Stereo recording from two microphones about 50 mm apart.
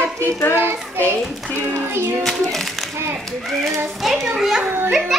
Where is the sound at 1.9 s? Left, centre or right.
Right.